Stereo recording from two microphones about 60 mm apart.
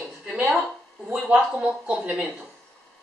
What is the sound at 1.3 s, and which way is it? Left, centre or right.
Speech, right.